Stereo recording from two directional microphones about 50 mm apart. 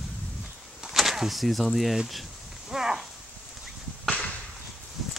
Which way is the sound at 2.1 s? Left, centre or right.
Centre.